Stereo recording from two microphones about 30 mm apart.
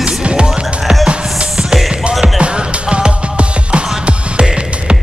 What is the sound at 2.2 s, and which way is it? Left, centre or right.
Music, right.